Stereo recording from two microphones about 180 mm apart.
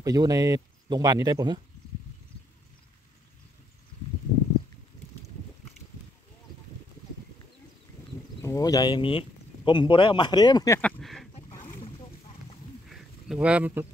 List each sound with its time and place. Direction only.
0.0 s speech: 20° right (ahead or behind)
8.4 s speech: 20° left (ahead or behind)
10.8 s speech: 5° left (ahead or behind)
11.3 s boat: 30° left (ahead or behind)
12.8 s a sound: 5° right (ahead or behind)